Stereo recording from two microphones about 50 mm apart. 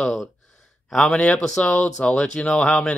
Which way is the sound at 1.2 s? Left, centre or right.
Centre.